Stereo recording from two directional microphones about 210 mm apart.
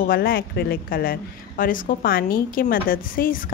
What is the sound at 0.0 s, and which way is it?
A woman's voice, 45° left (ahead or behind).